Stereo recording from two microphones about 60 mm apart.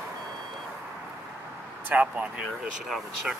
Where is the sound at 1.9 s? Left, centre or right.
Right.